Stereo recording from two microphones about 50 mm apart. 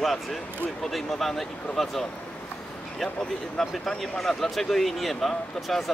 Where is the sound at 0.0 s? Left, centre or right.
Centre.